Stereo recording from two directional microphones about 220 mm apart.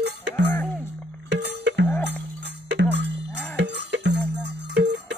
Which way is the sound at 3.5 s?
50° right (ahead or behind).